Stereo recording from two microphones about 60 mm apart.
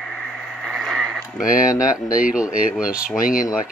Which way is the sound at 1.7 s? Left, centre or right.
Left.